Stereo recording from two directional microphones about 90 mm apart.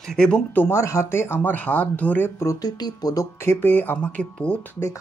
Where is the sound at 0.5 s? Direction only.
25° left (ahead or behind).